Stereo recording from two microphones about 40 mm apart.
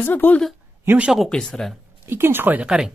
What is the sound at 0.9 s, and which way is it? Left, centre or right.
Speech, right.